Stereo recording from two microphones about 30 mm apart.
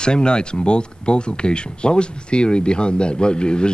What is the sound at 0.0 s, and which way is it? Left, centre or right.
Speech, left.